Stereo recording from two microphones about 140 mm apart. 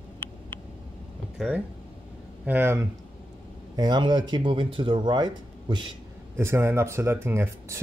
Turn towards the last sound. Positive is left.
turn(degrees=-20)  # may be behind; listen again after turning